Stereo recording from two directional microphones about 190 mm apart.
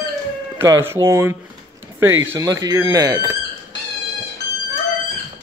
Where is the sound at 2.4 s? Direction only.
20° right (ahead or behind).